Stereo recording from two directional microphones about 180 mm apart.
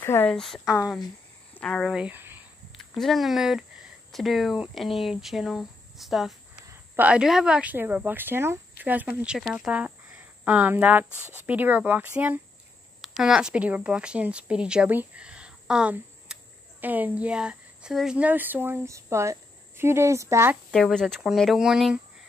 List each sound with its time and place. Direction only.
0.0 s speech: 10° left (ahead or behind); by 2.4 s 10° right (ahead or behind)
2.8 s a woman's voice: centre (ahead or behind); by 20.5 s 15° right (ahead or behind)
20.7 s speech: centre (ahead or behind)